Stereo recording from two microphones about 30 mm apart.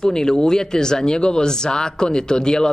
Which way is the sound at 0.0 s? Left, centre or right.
Left.